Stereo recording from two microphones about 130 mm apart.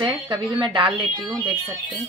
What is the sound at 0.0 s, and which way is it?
Speech, 40° right (ahead or behind).